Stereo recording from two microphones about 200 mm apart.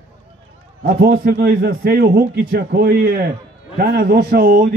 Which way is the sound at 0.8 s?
55° right (ahead or behind).